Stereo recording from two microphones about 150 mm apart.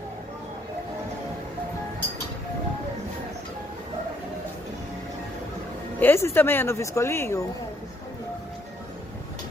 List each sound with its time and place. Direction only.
5.9 s speech: 15° left (ahead or behind)